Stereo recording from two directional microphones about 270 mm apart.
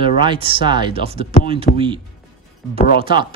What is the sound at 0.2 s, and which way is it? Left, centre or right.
Speech, centre.